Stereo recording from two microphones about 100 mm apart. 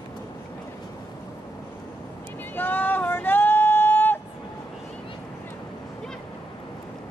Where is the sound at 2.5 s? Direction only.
20° left (ahead or behind).